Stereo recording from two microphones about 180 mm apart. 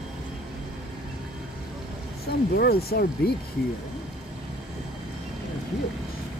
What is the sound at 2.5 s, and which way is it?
Speech, 60° left (ahead or behind).